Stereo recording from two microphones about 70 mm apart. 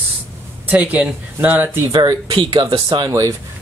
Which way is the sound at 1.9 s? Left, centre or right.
Right.